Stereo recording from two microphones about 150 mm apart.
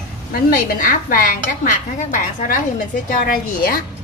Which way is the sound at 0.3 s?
75° left (ahead or behind).